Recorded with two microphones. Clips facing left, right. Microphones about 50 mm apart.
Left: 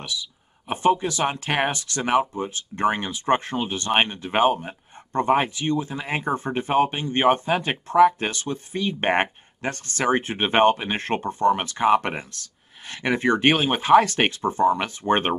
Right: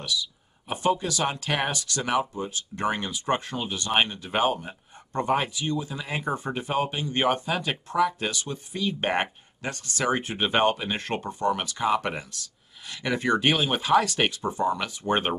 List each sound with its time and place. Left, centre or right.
0.0 s speech: left